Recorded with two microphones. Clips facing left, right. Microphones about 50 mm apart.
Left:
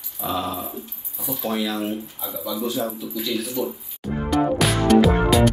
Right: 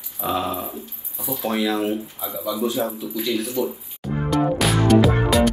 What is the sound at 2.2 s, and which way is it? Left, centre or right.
Speech, centre.